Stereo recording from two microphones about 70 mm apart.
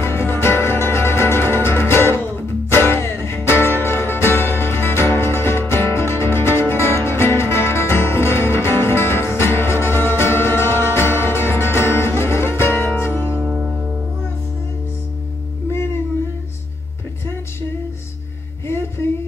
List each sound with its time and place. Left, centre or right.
0.0 s music: left
13.4 s music: centre
18.7 s a sound: left